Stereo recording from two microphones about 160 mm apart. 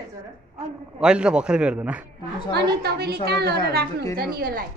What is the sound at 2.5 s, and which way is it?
A woman's voice, 90° right.